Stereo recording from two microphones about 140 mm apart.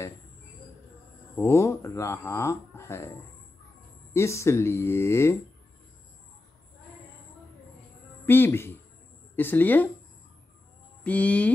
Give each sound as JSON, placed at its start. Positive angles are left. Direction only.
{"t": 1.3, "sound": "speech", "side_deg": 20}
{"t": 4.1, "sound": "speech", "side_deg": 20}
{"t": 8.3, "sound": "speech", "side_deg": 15}
{"t": 11.1, "sound": "speech", "side_deg": 10}